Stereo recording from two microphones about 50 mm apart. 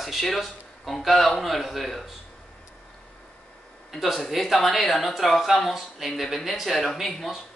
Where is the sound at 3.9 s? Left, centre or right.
Centre.